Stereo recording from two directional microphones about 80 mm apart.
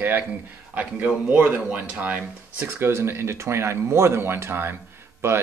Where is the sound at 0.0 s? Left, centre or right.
Right.